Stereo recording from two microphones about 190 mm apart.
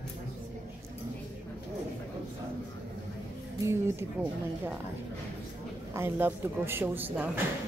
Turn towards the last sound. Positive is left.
turn(degrees=-10)  # may be behind; listen again after turning